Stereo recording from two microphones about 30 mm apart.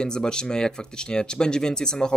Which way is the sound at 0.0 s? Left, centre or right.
Left.